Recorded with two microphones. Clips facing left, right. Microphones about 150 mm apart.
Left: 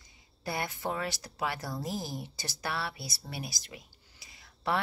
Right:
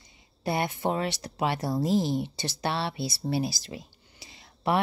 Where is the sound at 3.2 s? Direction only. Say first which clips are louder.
Right 14 dB; 30° right (ahead or behind).